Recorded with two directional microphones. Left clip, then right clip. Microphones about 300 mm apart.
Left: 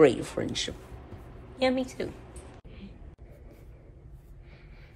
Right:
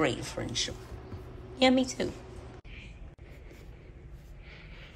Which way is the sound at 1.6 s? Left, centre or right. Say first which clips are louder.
Right 2 dB; centre.